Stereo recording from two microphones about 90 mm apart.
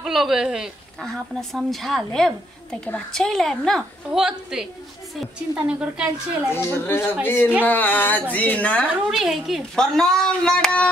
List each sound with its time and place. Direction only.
0.0 s a woman's voice: 5° right (ahead or behind)
4.2 s a woman's voice: 5° right (ahead or behind)
6.5 s speech: 30° left (ahead or behind)
9.1 s speech: centre (ahead or behind)